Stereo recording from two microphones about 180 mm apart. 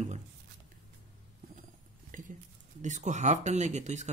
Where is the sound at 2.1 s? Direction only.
50° right (ahead or behind).